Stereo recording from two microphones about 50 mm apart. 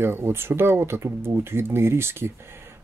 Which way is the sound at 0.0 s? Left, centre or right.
Right.